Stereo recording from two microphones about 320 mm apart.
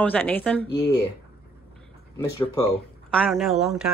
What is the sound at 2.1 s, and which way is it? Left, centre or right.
A woman's voice, centre.